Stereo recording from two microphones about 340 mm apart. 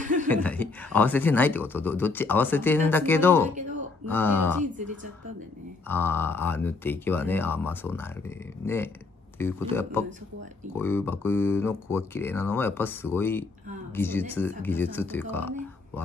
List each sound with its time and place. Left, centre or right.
0.0 s chuckle: right
0.3 s speech: centre
5.9 s speech: centre